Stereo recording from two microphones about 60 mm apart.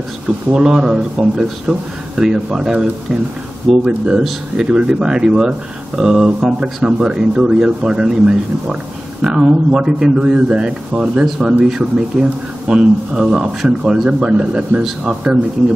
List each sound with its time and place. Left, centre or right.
0.5 s speech: centre